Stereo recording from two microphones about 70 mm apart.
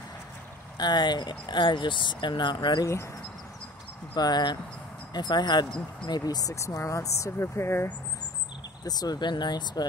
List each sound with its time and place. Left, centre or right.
0.7 s speech: left
2.8 s speech: left
4.1 s speech: left
6.5 s speech: left
8.8 s speech: left